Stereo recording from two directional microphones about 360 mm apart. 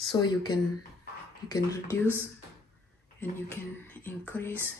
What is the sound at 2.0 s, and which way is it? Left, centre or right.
Speech, centre.